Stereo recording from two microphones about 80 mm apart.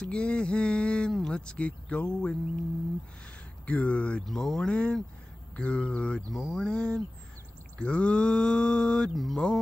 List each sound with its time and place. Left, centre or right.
0.0 s speech: centre
3.6 s speech: centre
4.3 s speech: centre